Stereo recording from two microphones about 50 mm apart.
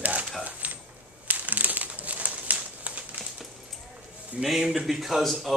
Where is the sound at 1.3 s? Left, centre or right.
Right.